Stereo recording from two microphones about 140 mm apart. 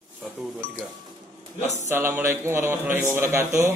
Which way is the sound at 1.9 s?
15° right (ahead or behind).